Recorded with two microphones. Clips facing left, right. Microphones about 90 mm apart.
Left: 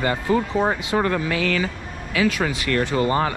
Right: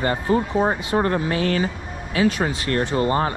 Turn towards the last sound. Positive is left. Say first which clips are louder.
# even
turn(degrees=-35)  # may be behind; listen again after turning